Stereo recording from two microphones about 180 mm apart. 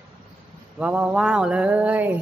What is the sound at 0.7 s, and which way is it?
Speech, 5° right (ahead or behind).